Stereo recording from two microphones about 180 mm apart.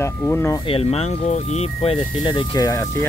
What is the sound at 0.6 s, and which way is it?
Speech, 35° left (ahead or behind).